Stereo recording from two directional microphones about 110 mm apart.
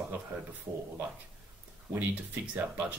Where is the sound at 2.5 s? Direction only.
15° right (ahead or behind).